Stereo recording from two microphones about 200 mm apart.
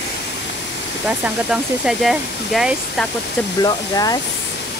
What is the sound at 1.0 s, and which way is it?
Speech, 5° right (ahead or behind).